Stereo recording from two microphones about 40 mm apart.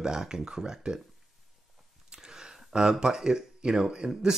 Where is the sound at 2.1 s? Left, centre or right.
Centre.